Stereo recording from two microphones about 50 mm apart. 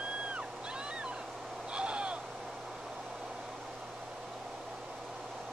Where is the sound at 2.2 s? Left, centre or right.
Centre.